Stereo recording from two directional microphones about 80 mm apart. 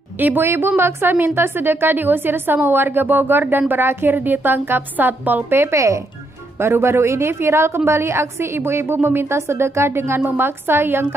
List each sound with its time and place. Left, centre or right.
0.2 s a woman's voice: right